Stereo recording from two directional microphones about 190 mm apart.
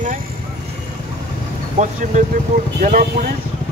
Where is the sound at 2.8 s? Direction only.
45° right (ahead or behind).